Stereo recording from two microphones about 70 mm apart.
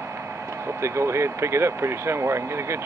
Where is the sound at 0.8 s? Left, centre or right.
Right.